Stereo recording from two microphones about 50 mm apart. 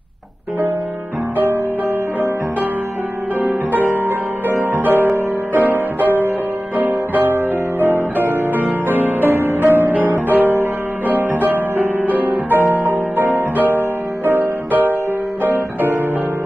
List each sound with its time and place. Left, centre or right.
3.4 s music: right
9.3 s music: right